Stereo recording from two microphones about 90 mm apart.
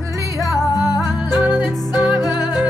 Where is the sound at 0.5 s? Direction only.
45° left (ahead or behind).